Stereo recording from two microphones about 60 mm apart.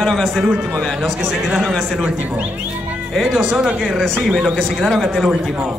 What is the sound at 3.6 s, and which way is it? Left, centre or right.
Speech, centre.